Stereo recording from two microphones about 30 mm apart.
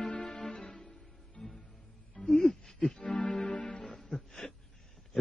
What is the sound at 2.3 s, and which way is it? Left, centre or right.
Music, centre.